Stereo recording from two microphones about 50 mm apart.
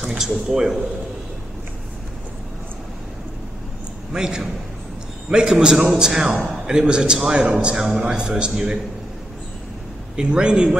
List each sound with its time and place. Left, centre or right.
0.0 s a man's voice: centre
4.1 s a man's voice: centre
10.1 s a man's voice: centre